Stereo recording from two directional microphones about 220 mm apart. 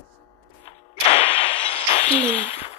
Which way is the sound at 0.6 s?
25° left (ahead or behind).